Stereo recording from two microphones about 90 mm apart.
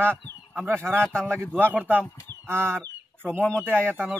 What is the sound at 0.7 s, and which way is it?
Speech, 25° right (ahead or behind).